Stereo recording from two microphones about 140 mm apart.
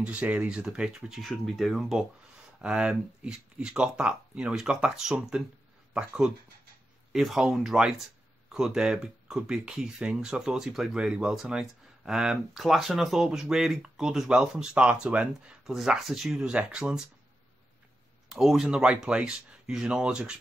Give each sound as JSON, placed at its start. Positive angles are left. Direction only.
{"t": 0.0, "sound": "speech", "side_deg": -10}
{"t": 18.3, "sound": "speech", "side_deg": 0}